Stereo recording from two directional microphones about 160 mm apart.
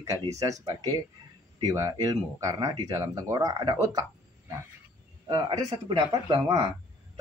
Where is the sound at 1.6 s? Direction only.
20° right (ahead or behind).